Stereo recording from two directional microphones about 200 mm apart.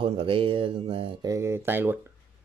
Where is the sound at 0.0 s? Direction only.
25° right (ahead or behind).